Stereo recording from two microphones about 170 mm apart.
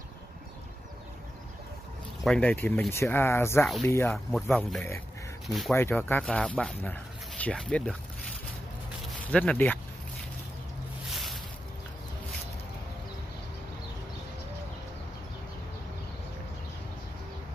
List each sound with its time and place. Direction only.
2.2 s speech: 5° left (ahead or behind)
4.3 s speech: centre (ahead or behind)
5.8 s speech: 15° left (ahead or behind)
9.0 s speech: 5° left (ahead or behind)
11.1 s boat: centre (ahead or behind)